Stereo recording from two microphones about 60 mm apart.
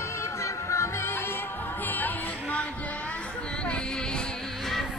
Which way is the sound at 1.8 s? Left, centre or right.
Left.